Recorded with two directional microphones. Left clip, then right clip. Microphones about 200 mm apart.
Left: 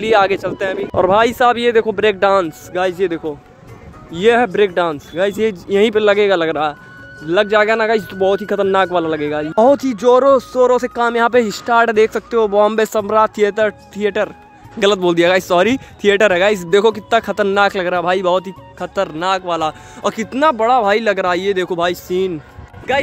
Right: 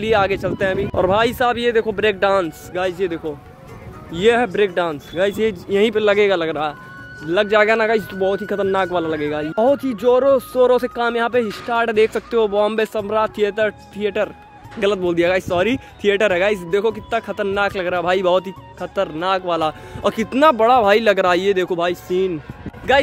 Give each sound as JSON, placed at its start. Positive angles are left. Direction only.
{"t": 0.0, "sound": "speech", "side_deg": 20}
{"t": 22.9, "sound": "speech", "side_deg": -10}